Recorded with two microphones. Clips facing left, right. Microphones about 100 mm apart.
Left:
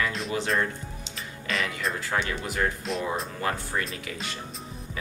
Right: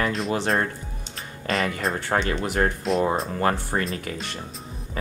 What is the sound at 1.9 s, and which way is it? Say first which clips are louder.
Speech: right 5 dB; 60° right (ahead or behind).